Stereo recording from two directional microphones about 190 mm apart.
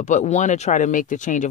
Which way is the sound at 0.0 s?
40° left (ahead or behind).